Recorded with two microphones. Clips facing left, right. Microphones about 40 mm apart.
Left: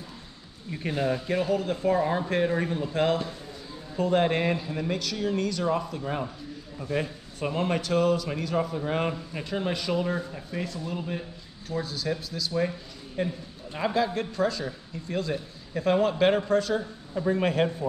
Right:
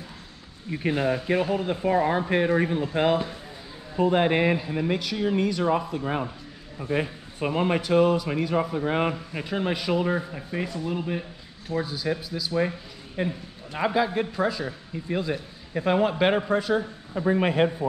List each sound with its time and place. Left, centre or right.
0.7 s a man's voice: centre